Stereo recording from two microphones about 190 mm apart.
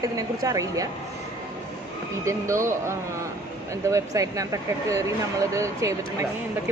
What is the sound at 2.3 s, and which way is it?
Speech, 15° right (ahead or behind).